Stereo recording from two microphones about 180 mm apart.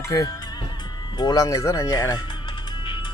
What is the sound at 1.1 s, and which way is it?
Music, 20° left (ahead or behind).